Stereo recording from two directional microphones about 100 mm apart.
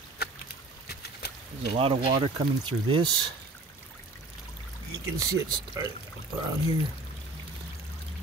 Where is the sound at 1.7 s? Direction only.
65° right (ahead or behind).